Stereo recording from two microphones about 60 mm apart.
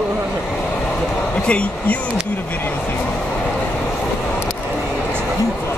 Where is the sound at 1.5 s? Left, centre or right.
Centre.